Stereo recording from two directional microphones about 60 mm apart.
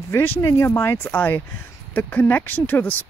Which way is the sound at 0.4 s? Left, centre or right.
Left.